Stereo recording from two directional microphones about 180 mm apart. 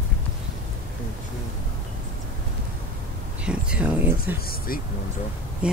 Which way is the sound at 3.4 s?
5° right (ahead or behind).